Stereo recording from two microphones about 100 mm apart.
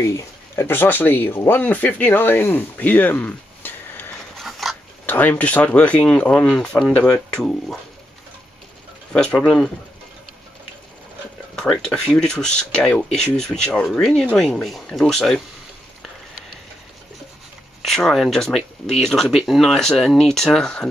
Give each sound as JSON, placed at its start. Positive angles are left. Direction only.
{"t": 0.0, "sound": "speech", "side_deg": 25}
{"t": 4.4, "sound": "a sound", "side_deg": 0}
{"t": 5.0, "sound": "speech", "side_deg": 15}
{"t": 9.1, "sound": "speech", "side_deg": 10}
{"t": 11.5, "sound": "speech", "side_deg": 5}
{"t": 17.8, "sound": "speech", "side_deg": 5}